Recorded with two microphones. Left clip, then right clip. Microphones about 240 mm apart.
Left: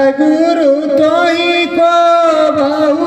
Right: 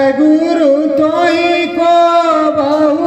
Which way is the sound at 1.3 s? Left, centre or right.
Left.